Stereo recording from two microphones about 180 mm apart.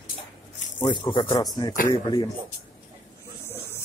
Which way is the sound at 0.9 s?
25° left (ahead or behind).